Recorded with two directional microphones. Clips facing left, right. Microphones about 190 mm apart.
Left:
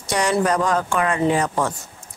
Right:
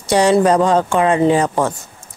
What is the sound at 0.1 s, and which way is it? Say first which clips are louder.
A woman's voice: right 7 dB; 30° right (ahead or behind).